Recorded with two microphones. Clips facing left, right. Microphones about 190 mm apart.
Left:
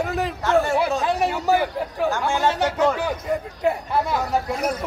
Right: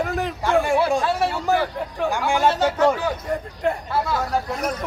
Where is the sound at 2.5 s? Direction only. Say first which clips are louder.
Right 2 dB; 10° left (ahead or behind).